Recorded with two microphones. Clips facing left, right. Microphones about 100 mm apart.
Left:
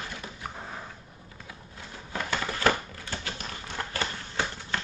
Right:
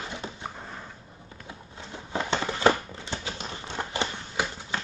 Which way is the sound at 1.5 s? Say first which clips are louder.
Right 4 dB; 25° right (ahead or behind).